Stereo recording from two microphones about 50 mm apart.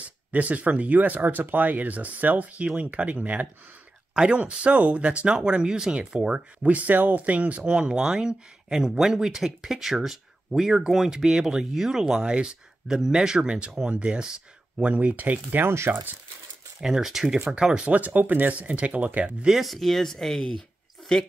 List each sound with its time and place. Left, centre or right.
0.3 s speech: right
4.1 s speech: centre
15.9 s speech: right
16.8 s speech: centre
17.8 s speech: right
19.6 s speech: centre